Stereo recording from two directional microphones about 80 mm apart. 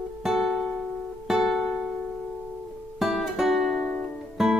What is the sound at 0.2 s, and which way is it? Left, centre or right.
Music, centre.